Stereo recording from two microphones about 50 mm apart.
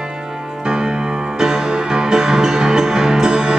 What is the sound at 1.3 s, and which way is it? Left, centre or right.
Music, centre.